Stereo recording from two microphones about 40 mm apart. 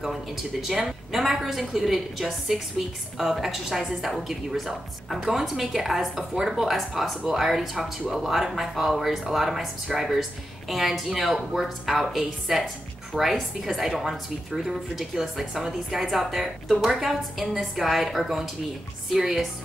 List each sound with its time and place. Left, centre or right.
0.0 s a woman's voice: centre
13.1 s a woman's voice: centre
13.7 s a woman's voice: centre